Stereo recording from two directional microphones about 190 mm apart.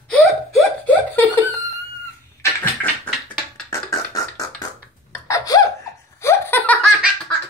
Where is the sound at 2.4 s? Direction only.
10° left (ahead or behind).